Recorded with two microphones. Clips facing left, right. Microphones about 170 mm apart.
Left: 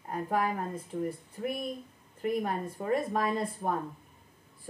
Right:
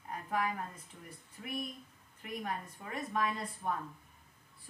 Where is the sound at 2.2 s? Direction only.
40° left (ahead or behind).